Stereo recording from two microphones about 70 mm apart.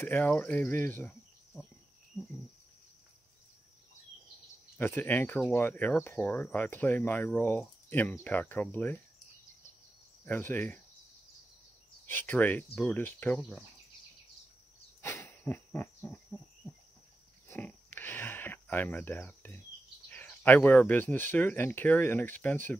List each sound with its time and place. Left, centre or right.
0.0 s speech: left
4.7 s speech: left
10.2 s speech: left
12.1 s speech: left
15.0 s a sound: left
17.5 s a sound: left
19.2 s speech: left